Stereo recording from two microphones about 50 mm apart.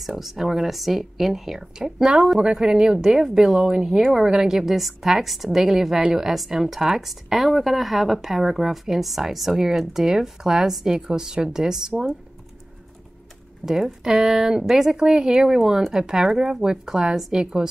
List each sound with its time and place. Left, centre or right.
0.0 s a woman's voice: centre
13.7 s a woman's voice: centre